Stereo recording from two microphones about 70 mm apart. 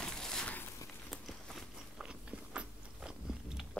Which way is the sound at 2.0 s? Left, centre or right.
Centre.